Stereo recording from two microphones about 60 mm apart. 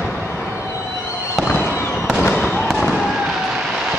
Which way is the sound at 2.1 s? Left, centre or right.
Centre.